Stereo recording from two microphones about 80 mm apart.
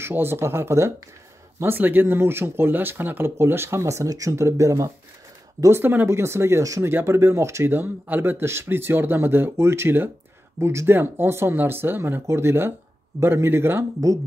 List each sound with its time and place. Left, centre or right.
0.0 s speech: right
5.8 s speech: right